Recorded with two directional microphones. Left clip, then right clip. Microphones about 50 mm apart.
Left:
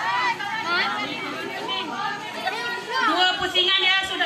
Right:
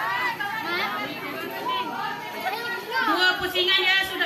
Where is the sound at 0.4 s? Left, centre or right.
Centre.